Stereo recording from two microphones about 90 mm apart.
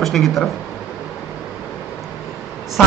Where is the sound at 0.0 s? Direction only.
Centre (ahead or behind).